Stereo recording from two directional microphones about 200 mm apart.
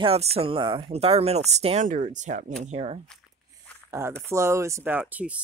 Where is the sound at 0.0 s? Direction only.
30° right (ahead or behind).